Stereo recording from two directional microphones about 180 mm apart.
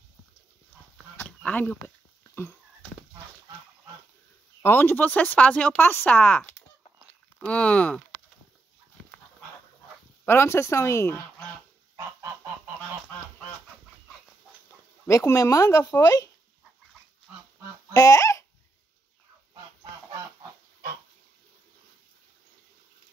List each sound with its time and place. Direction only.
1.1 s a sound: 10° left (ahead or behind)
4.6 s speech: 10° left (ahead or behind)
10.2 s speech: 15° left (ahead or behind)
12.0 s goose: 15° right (ahead or behind)
15.0 s speech: 15° left (ahead or behind)
17.9 s speech: 20° left (ahead or behind)